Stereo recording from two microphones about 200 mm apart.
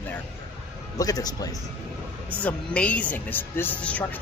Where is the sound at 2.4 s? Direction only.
5° left (ahead or behind).